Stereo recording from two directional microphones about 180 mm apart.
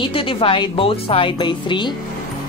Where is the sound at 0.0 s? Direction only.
30° left (ahead or behind).